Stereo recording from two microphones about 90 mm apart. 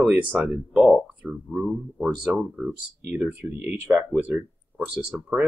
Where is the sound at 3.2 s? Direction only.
20° right (ahead or behind).